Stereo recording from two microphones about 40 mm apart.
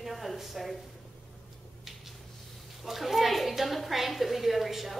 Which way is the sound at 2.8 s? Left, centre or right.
Centre.